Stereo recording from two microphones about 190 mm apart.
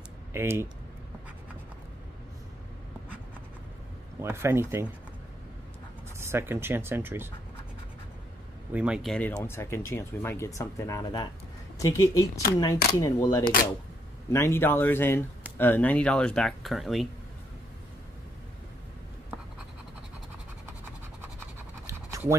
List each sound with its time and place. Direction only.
0.3 s speech: 15° right (ahead or behind)
4.2 s speech: 15° right (ahead or behind)
6.1 s speech: 15° right (ahead or behind)
8.7 s speech: 5° right (ahead or behind); by 11.2 s 20° left (ahead or behind)
12.0 s speech: 55° left (ahead or behind)
13.0 s speech: 20° left (ahead or behind)
13.4 s speech: 50° left (ahead or behind)
14.3 s speech: 15° left (ahead or behind)
21.8 s scratch: 15° right (ahead or behind)